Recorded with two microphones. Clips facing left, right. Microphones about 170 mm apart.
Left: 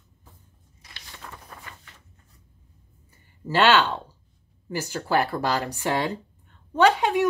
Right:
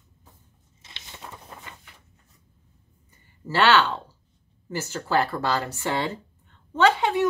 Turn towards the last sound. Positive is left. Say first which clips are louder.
# left 1 dB
turn(degrees=15)  # may be behind; listen again after turning